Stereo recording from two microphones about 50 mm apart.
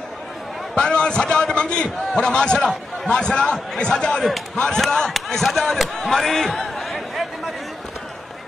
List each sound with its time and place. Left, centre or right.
0.7 s a man's voice: centre